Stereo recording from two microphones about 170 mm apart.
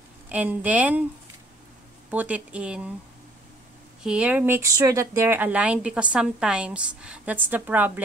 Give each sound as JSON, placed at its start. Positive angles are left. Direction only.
{"t": 0.3, "sound": "speech", "side_deg": -10}
{"t": 2.0, "sound": "speech", "side_deg": -10}
{"t": 4.0, "sound": "speech", "side_deg": -5}